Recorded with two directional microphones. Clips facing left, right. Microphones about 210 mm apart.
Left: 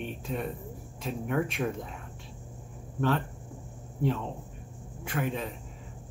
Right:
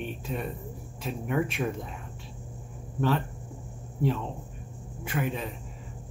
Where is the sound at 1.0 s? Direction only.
5° right (ahead or behind).